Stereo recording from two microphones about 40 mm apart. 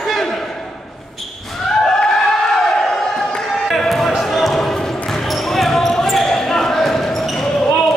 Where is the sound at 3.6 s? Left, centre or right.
Centre.